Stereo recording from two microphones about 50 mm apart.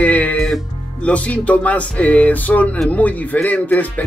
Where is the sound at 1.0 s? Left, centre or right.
Left.